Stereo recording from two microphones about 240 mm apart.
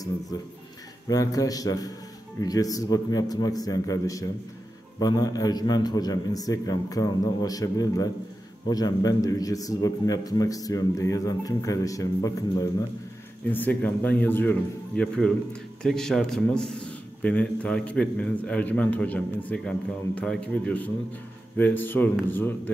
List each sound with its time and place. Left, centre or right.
0.3 s a man's voice: centre